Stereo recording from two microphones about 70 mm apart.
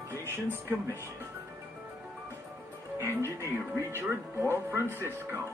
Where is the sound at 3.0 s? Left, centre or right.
Right.